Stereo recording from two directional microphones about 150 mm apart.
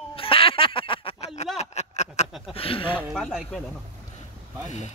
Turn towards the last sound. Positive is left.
turn(degrees=0)  # may be behind; listen again after turning